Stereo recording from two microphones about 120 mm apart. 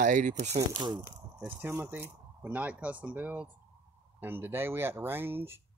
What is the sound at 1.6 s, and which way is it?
Speech, 20° right (ahead or behind).